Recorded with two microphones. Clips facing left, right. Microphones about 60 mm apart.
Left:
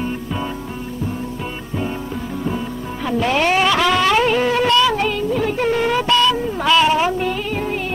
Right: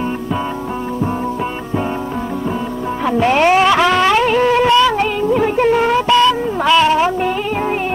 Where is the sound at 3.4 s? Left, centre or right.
Centre.